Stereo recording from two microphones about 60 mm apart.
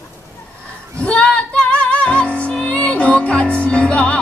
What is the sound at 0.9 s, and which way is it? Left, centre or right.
Music, centre.